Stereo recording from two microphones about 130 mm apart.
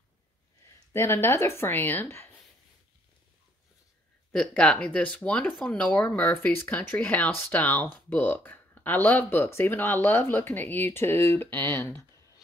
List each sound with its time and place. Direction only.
0.9 s a woman's voice: 20° left (ahead or behind)
4.3 s speech: 5° left (ahead or behind)